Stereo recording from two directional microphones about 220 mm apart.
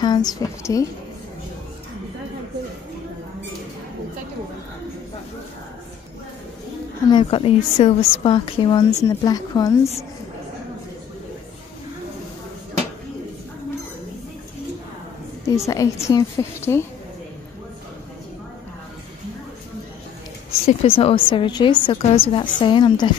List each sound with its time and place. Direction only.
0.0 s a woman's voice: 20° left (ahead or behind)
7.1 s a woman's voice: 20° left (ahead or behind)
15.5 s a woman's voice: 15° left (ahead or behind)
20.6 s a woman's voice: 25° left (ahead or behind)